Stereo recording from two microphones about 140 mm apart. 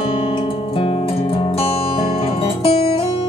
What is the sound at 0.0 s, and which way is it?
Music, 45° left (ahead or behind).